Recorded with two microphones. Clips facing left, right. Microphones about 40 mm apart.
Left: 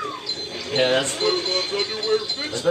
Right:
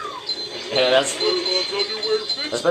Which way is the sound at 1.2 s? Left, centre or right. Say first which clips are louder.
Right 1 dB; centre.